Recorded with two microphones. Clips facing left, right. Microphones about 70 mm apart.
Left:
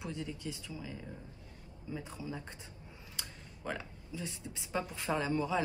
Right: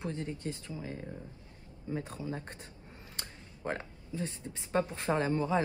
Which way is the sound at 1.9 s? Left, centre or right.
Right.